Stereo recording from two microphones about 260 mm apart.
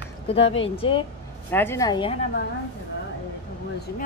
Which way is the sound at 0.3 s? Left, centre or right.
Left.